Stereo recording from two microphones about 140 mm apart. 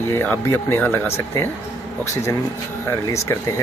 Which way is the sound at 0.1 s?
15° left (ahead or behind).